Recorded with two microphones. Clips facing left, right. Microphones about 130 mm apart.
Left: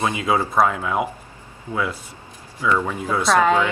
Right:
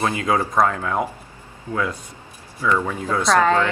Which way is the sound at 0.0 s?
10° left (ahead or behind).